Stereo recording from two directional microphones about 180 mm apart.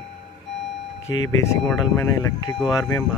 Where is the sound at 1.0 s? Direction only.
90° left.